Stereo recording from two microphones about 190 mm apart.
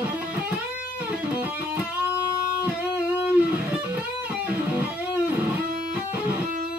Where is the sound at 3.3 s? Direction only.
5° right (ahead or behind).